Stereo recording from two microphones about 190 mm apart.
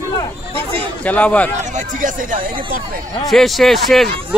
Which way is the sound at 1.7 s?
45° right (ahead or behind).